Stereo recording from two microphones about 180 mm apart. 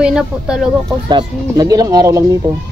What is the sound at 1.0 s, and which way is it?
A child's voice, 20° right (ahead or behind).